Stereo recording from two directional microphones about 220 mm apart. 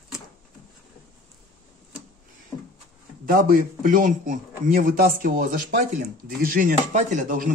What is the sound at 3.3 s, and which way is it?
A man's voice, 40° right (ahead or behind).